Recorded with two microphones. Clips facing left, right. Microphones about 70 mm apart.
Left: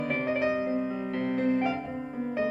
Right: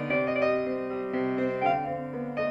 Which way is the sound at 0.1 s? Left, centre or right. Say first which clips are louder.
Right 4 dB; centre.